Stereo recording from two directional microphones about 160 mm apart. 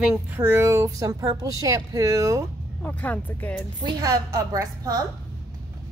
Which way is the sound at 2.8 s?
10° left (ahead or behind).